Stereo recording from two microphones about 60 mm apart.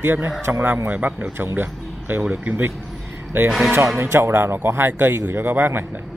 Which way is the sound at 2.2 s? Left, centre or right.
Right.